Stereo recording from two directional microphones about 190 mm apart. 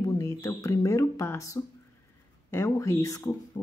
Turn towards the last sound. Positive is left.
turn(degrees=15)  # may be behind; listen again after turning